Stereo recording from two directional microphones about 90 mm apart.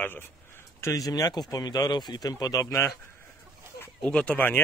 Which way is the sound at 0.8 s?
40° left (ahead or behind).